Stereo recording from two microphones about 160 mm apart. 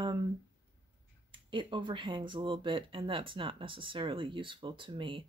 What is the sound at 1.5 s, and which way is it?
Speech, 30° right (ahead or behind).